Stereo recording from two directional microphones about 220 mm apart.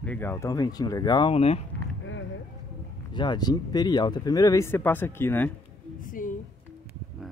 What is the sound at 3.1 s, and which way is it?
Speech, 20° left (ahead or behind).